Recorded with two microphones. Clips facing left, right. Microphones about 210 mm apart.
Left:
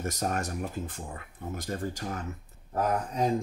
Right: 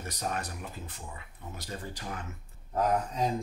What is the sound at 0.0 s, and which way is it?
Speech, 45° left (ahead or behind).